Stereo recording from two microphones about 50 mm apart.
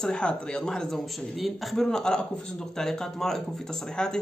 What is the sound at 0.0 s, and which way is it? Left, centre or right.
Speech, centre.